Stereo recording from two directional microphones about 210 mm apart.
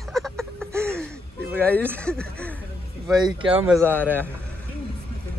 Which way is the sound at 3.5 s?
10° right (ahead or behind).